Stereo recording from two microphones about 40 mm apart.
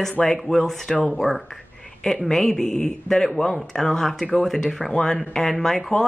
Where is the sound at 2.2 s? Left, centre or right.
Centre.